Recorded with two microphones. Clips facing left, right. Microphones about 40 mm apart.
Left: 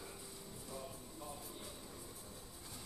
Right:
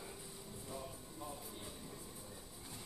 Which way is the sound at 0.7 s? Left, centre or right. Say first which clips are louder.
Even; centre.